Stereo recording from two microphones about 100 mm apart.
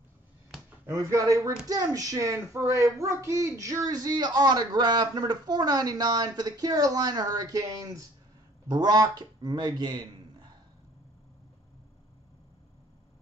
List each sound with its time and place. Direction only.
0.8 s speech: 30° right (ahead or behind); by 10.0 s 45° right (ahead or behind)